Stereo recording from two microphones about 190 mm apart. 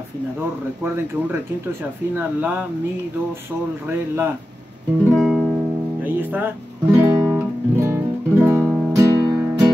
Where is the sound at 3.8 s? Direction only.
15° right (ahead or behind).